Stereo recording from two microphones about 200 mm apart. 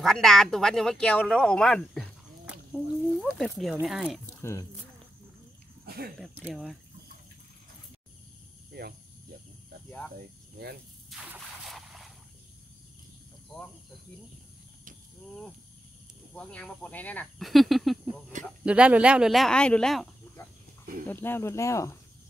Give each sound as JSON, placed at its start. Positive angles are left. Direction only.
{"t": 0.0, "sound": "speech", "side_deg": 0}
{"t": 4.4, "sound": "speech", "side_deg": 15}
{"t": 5.9, "sound": "a sound", "side_deg": -50}
{"t": 6.4, "sound": "speech", "side_deg": 0}
{"t": 9.8, "sound": "speech", "side_deg": 5}
{"t": 11.1, "sound": "a sound", "side_deg": -5}
{"t": 13.5, "sound": "insect", "side_deg": 0}
{"t": 16.3, "sound": "speech", "side_deg": 5}
{"t": 21.1, "sound": "speech", "side_deg": 10}